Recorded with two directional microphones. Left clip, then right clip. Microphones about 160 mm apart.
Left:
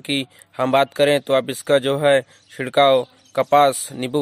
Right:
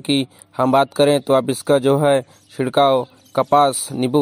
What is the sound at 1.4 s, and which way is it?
Speech, 25° left (ahead or behind).